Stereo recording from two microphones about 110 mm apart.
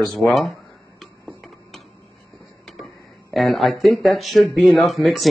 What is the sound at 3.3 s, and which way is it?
Speech, centre (ahead or behind).